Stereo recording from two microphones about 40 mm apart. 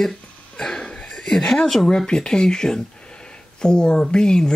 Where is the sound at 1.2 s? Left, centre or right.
Centre.